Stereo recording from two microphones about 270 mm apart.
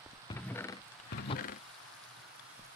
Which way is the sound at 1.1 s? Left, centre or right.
Left.